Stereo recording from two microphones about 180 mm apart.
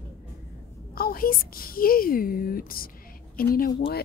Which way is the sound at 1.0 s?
55° left (ahead or behind).